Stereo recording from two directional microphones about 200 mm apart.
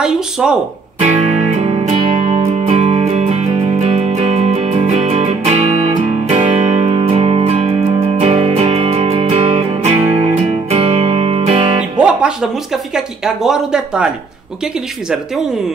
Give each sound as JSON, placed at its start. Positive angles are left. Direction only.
{"t": 0.0, "sound": "speech", "side_deg": -5}
{"t": 1.3, "sound": "music", "side_deg": -30}
{"t": 12.0, "sound": "music", "side_deg": -5}
{"t": 12.9, "sound": "speech", "side_deg": -5}